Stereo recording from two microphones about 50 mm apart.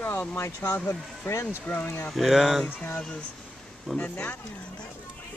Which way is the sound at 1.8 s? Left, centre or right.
Left.